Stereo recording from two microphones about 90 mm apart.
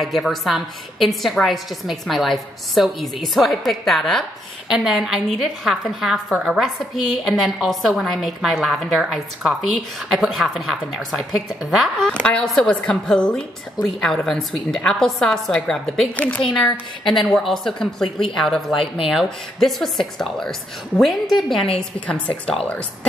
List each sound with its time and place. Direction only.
0.0 s a woman's voice: centre (ahead or behind)
12.1 s a woman's voice: 10° left (ahead or behind)
17.2 s a woman's voice: centre (ahead or behind)
21.7 s a woman's voice: 10° left (ahead or behind)